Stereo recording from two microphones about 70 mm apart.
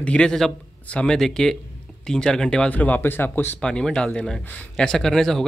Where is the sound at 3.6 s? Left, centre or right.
Centre.